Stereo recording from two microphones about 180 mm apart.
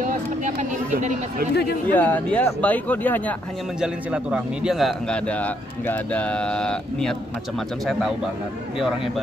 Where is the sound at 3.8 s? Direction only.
5° right (ahead or behind).